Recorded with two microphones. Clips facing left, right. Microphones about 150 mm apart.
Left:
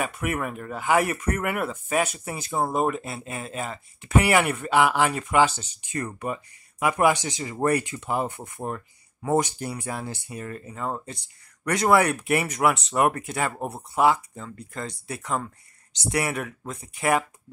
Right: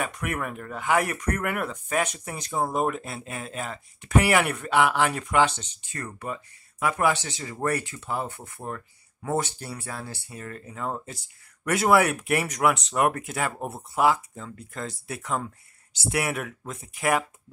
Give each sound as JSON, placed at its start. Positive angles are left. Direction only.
{"t": 0.0, "sound": "speech", "side_deg": 5}